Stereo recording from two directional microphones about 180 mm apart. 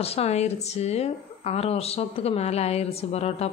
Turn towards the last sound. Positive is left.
turn(degrees=35)  # may be behind; listen again after turning